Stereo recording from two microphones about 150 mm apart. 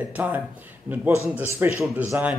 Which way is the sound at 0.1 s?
10° right (ahead or behind).